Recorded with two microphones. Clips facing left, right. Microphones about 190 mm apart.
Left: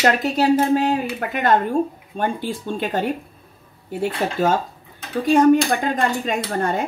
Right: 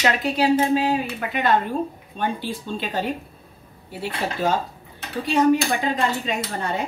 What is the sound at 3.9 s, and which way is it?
Speech, 50° left (ahead or behind).